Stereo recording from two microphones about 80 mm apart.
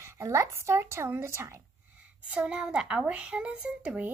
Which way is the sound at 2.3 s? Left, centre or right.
Centre.